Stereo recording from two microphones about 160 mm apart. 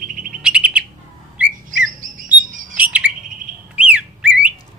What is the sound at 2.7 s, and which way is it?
Bird, 10° right (ahead or behind).